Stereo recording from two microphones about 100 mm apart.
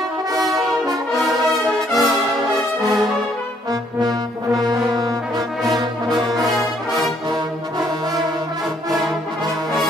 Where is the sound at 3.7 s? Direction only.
45° right (ahead or behind).